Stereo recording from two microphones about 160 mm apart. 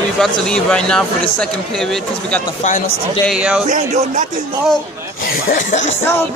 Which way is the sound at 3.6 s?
50° right (ahead or behind).